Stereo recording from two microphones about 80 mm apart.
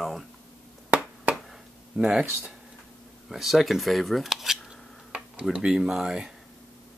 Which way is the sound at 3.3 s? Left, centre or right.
Centre.